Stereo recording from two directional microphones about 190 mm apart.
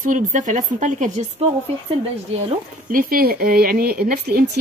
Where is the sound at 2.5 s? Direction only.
45° right (ahead or behind).